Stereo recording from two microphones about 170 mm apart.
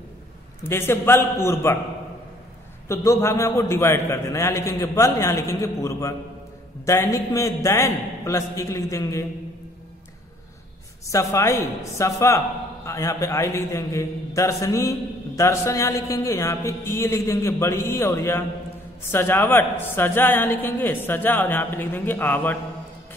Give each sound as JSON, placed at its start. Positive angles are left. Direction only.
{"t": 0.7, "sound": "a man's voice", "side_deg": 15}
{"t": 2.9, "sound": "a man's voice", "side_deg": 15}
{"t": 11.1, "sound": "a man's voice", "side_deg": 15}